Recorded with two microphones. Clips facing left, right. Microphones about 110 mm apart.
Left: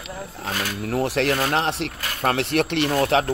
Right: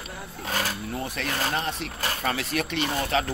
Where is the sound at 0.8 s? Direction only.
85° left.